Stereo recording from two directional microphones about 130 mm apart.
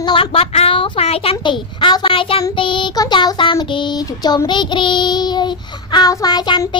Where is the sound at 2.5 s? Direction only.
40° left (ahead or behind).